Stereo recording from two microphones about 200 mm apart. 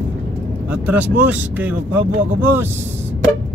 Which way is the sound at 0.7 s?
5° right (ahead or behind).